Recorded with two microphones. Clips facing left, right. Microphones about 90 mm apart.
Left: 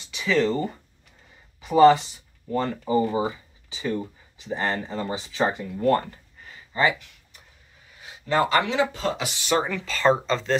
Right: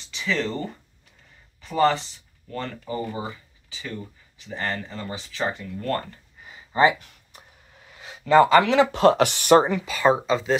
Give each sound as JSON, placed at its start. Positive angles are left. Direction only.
{"t": 0.1, "sound": "speech", "side_deg": 5}
{"t": 8.5, "sound": "speech", "side_deg": -90}
{"t": 9.7, "sound": "speech", "side_deg": -15}